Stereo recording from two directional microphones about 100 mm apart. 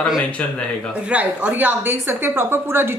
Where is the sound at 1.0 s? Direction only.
15° right (ahead or behind).